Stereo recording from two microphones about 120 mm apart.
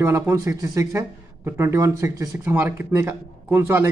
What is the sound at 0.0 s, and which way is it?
A man's voice, 20° right (ahead or behind).